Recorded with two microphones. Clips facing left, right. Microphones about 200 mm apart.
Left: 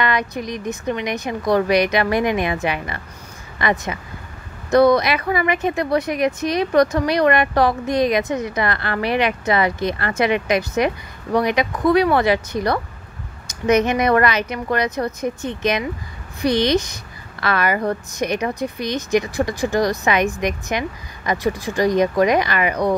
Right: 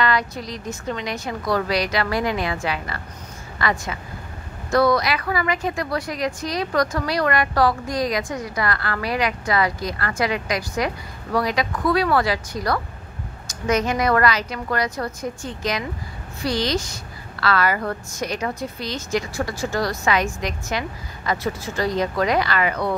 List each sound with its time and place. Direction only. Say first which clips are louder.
0.0 s a woman's voice: left 1 dB; 20° left (ahead or behind)